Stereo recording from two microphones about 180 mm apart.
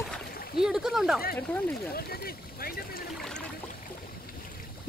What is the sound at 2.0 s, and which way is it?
Speech, 55° left (ahead or behind).